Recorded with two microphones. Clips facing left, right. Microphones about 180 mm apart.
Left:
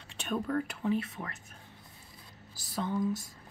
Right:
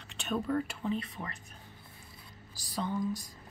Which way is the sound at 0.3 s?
Centre (ahead or behind).